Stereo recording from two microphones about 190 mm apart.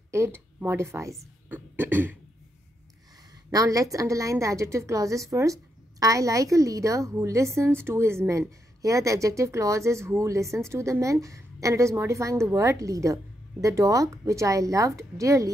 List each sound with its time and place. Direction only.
0.1 s a woman's voice: 15° right (ahead or behind)
1.5 s a sound: 10° right (ahead or behind)
3.4 s speech: 15° right (ahead or behind)